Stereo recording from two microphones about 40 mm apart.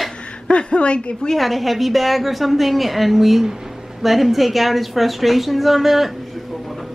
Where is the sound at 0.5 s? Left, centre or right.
Left.